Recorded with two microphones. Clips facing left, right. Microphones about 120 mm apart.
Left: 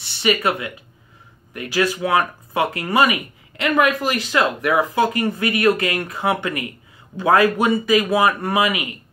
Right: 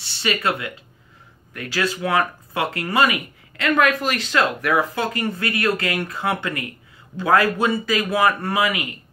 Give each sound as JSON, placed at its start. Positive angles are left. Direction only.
{"t": 0.2, "sound": "speech", "side_deg": 15}